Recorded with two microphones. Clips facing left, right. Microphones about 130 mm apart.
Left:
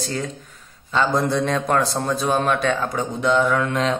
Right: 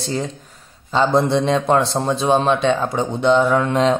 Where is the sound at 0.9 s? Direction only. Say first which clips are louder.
Right 4 dB; 30° right (ahead or behind).